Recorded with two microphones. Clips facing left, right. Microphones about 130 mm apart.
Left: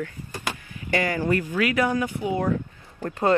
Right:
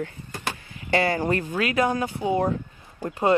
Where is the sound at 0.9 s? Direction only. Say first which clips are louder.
Right 1 dB; 35° right (ahead or behind).